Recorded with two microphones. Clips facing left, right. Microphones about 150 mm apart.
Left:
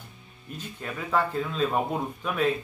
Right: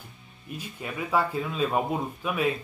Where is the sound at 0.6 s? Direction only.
10° right (ahead or behind).